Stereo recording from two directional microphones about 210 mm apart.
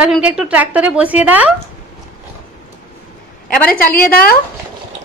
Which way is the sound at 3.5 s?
5° left (ahead or behind).